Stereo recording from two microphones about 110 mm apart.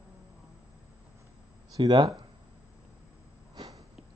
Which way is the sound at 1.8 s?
45° right (ahead or behind).